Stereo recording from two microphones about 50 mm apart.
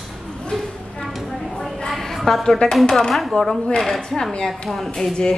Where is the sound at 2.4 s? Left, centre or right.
Centre.